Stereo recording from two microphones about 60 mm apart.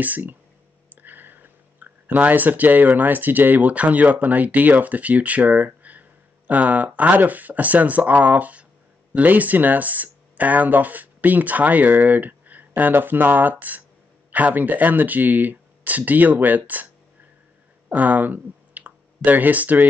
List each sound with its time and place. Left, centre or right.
0.0 s speech: right
17.8 s speech: right